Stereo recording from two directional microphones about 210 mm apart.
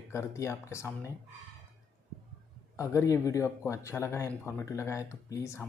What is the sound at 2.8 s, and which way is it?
Speech, 15° left (ahead or behind).